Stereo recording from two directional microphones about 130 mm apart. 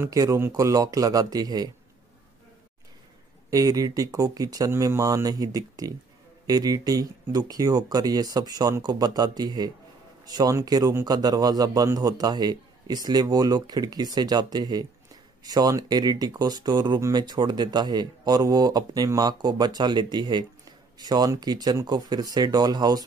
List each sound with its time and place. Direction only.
0.0 s speech: 25° right (ahead or behind)
3.4 s speech: 30° right (ahead or behind)